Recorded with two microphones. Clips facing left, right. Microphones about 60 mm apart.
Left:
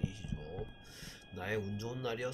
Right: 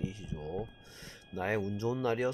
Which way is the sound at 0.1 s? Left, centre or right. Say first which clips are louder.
Right 6 dB; right.